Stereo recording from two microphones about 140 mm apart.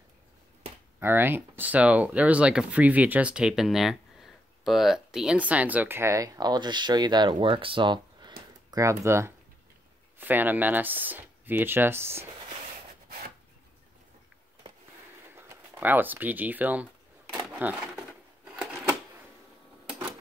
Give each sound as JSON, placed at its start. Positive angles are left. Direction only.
{"t": 0.9, "sound": "speech", "side_deg": -15}
{"t": 15.3, "sound": "speech", "side_deg": -15}
{"t": 18.4, "sound": "a sound", "side_deg": -10}